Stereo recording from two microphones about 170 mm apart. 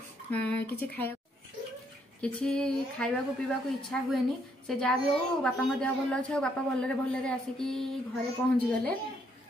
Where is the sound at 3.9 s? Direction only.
5° left (ahead or behind).